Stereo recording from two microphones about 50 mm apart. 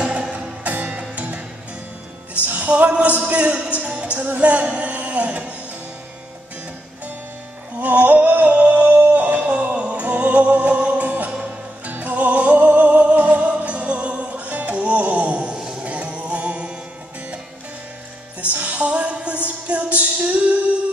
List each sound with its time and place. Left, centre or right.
0.0 s music: right
2.4 s music: right
3.3 s speech: right
7.8 s male singing: right
11.1 s music: right
18.5 s music: right